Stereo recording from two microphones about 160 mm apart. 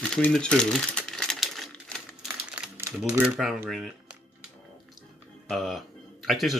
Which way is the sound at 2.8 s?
15° right (ahead or behind).